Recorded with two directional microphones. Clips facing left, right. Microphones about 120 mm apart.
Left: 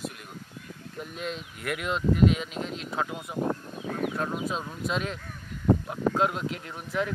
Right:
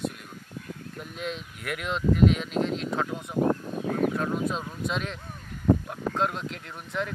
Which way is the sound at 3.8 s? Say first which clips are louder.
Right 5 dB; 45° right (ahead or behind).